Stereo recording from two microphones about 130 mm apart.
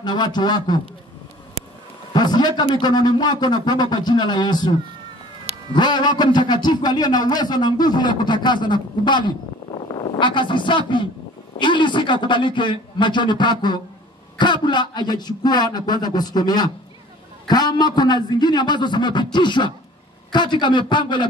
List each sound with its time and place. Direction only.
0.0 s a man's voice: 35° left (ahead or behind)
2.1 s a man's voice: 35° left (ahead or behind)